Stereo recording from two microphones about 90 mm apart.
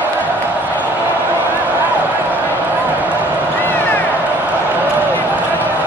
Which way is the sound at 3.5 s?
20° left (ahead or behind).